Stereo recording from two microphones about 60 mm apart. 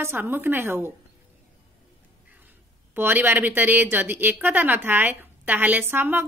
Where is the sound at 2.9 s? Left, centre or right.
Right.